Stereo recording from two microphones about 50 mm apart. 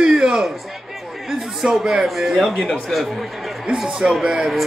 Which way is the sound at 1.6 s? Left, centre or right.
Centre.